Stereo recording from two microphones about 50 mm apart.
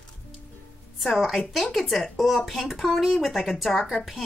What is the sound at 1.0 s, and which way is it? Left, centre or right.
Speech, centre.